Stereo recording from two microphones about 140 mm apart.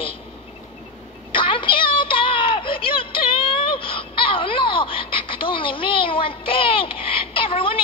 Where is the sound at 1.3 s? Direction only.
35° left (ahead or behind).